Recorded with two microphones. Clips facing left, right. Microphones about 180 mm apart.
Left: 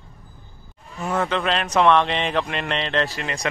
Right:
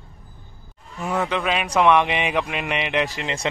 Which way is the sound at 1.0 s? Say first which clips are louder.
Left 1 dB; 10° right (ahead or behind).